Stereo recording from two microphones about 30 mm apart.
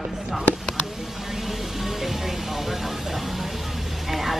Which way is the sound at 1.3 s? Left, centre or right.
Centre.